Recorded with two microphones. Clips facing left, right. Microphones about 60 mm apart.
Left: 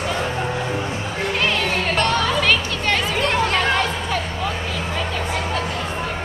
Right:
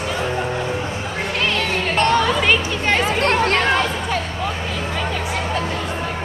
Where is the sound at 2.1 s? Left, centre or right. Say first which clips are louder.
Right 2 dB; centre.